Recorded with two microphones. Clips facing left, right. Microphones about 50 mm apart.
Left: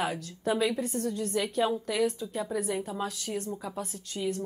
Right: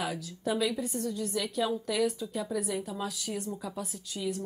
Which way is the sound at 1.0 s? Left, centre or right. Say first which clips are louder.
Left 3 dB; left.